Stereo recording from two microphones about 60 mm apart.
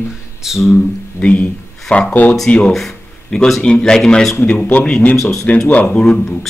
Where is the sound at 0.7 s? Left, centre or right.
Left.